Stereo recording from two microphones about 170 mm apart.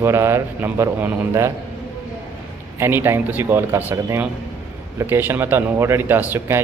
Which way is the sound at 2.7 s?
15° right (ahead or behind).